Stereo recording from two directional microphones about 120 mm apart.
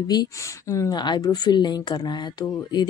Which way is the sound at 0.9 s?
35° left (ahead or behind).